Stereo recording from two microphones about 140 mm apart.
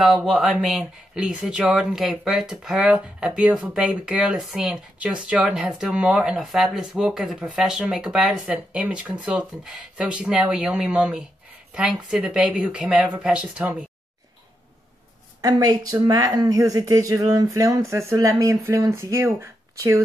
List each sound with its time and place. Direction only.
0.0 s speech: 5° right (ahead or behind)
15.4 s speech: 25° right (ahead or behind)